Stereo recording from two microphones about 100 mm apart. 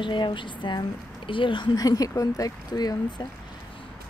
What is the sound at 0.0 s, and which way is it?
A woman's voice, 55° left (ahead or behind).